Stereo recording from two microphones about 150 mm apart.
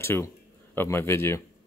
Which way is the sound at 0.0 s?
15° left (ahead or behind).